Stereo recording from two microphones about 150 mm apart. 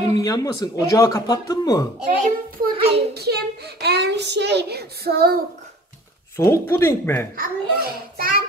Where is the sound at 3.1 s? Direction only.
90° right.